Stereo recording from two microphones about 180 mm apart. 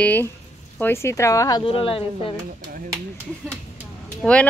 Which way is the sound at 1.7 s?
30° left (ahead or behind).